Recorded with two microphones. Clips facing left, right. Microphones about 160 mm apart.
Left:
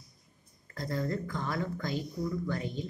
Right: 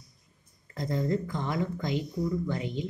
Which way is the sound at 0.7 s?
20° right (ahead or behind).